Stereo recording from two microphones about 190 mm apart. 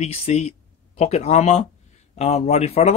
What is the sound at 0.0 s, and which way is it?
Speech, 35° left (ahead or behind).